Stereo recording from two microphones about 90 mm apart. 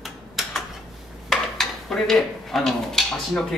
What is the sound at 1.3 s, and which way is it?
Speech, 5° left (ahead or behind).